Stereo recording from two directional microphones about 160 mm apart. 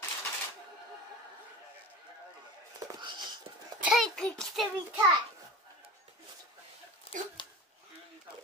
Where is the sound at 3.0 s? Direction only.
30° right (ahead or behind).